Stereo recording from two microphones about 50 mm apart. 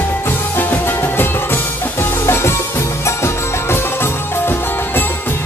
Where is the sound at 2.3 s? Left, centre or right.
Left.